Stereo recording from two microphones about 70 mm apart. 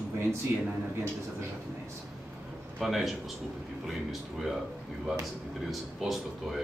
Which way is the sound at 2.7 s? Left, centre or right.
Centre.